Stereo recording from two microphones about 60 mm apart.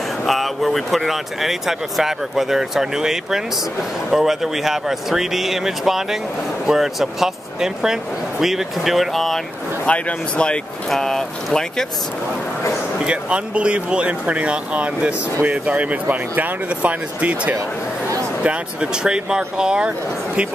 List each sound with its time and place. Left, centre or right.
0.3 s speech: centre
9.8 s speech: left
10.9 s speech: centre
13.0 s speech: centre